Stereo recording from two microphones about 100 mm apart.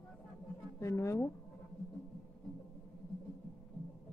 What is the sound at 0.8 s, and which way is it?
Speech, 30° left (ahead or behind).